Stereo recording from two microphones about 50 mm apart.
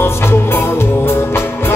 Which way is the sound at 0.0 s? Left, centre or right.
Left.